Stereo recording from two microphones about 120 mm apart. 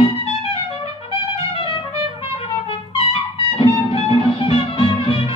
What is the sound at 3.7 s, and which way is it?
Music, 55° left (ahead or behind).